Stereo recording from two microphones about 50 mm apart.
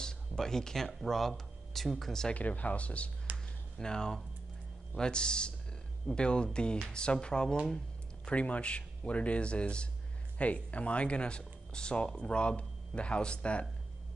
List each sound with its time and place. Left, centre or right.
0.0 s speech: centre
2.3 s speech: left
3.3 s a sound: right
3.7 s speech: centre